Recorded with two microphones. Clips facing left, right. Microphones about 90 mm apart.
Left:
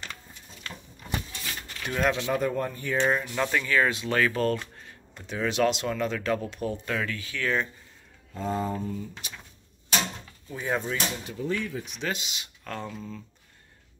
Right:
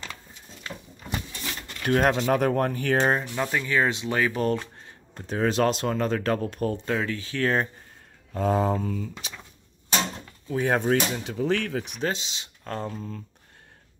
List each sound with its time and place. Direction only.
1.9 s speech: 55° right (ahead or behind)
2.4 s speech: 75° right (ahead or behind)
3.0 s speech: 40° right (ahead or behind)
3.3 s speech: 20° right (ahead or behind); by 6.8 s 45° right (ahead or behind)
6.9 s speech: 25° right (ahead or behind)
8.4 s mantra: 80° right
10.5 s speech: 65° right (ahead or behind)
12.0 s speech: 30° right (ahead or behind)